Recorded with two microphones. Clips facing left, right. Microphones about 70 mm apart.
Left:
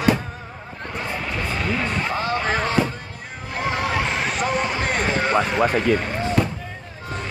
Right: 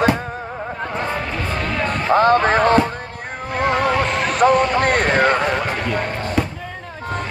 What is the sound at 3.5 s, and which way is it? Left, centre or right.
Music, right.